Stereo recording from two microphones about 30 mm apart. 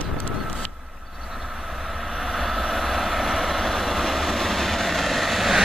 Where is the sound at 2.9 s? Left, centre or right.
Centre.